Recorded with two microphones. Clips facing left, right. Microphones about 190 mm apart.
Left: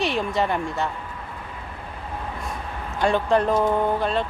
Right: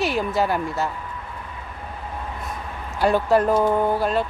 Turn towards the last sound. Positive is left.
turn(degrees=-5)  # may be behind; listen again after turning